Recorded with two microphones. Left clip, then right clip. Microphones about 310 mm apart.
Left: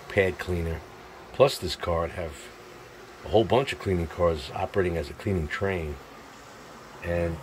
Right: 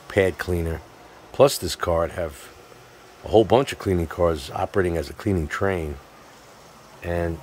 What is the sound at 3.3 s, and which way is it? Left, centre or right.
Speech, centre.